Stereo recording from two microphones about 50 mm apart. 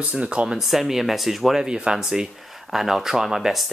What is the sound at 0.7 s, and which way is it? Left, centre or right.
Speech, centre.